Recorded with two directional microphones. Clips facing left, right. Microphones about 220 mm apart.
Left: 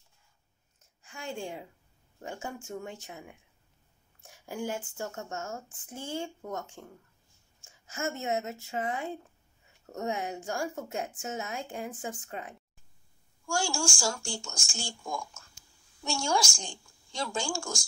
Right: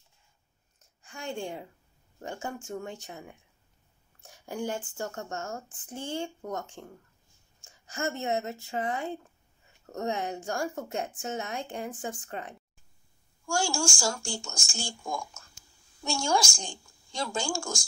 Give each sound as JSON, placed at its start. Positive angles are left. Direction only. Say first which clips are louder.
{"t": 1.0, "sound": "a woman's voice", "louder": "right 2 dB", "side_deg": 5}
{"t": 13.5, "sound": "speech", "louder": "right 2 dB", "side_deg": -45}